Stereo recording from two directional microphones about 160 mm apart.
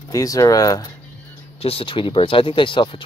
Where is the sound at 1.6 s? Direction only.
35° left (ahead or behind).